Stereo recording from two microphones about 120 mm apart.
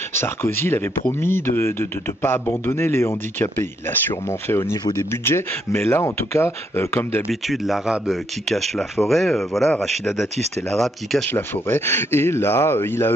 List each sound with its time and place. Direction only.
0.1 s speech: 20° left (ahead or behind)
7.2 s speech: centre (ahead or behind)
11.2 s speech: 15° left (ahead or behind)